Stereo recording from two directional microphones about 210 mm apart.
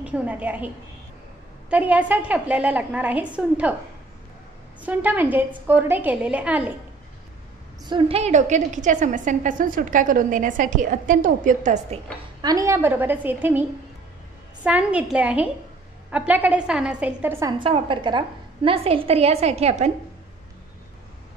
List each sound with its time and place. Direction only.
0.0 s a woman's voice: 5° right (ahead or behind)
1.7 s a woman's voice: 5° right (ahead or behind)
4.8 s a woman's voice: 10° right (ahead or behind)
7.8 s a woman's voice: 25° right (ahead or behind)
12.4 s a woman's voice: 15° right (ahead or behind)